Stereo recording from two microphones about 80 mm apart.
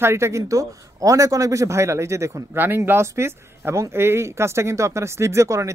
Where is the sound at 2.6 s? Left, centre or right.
Right.